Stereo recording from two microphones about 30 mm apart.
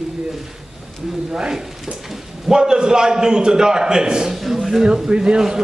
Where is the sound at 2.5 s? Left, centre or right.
Right.